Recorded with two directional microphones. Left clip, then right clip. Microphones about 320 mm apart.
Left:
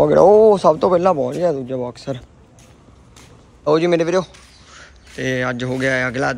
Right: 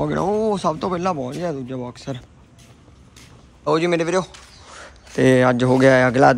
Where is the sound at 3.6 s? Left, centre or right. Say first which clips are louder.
Left 3 dB; centre.